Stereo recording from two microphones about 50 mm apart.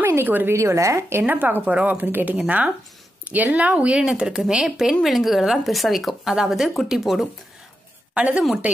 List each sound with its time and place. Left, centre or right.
0.2 s a woman's voice: right
0.5 s a woman's voice: right
1.2 s speech: right
1.6 s speech: right
2.0 s speech: right
2.4 s a woman's voice: right; by 7.2 s centre
8.1 s a woman's voice: right